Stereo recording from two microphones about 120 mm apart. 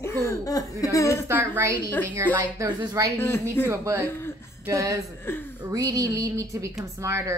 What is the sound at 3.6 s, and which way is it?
Speech, 25° right (ahead or behind).